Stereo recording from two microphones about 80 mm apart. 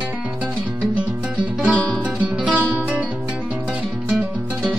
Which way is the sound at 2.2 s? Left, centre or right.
Centre.